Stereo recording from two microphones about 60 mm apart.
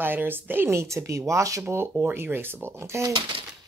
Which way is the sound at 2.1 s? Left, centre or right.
Right.